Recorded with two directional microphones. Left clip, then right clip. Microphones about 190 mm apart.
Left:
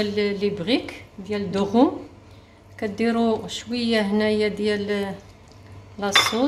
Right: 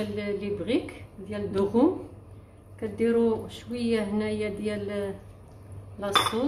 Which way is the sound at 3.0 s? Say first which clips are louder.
Left 1 dB; 55° left (ahead or behind).